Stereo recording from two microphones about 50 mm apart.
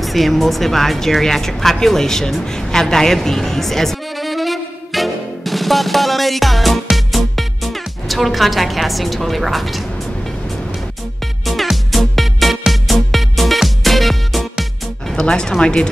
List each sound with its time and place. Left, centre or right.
0.0 s speech: centre
11.4 s music: centre
15.1 s speech: centre